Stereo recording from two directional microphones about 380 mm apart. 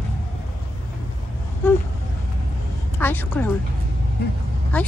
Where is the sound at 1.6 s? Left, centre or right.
Centre.